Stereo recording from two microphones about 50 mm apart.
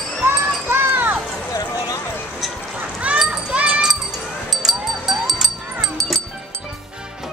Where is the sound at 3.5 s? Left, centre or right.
Right.